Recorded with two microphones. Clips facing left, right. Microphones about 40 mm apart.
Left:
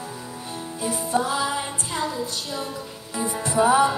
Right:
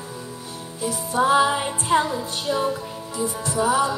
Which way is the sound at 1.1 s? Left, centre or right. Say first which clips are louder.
Right 7 dB; right.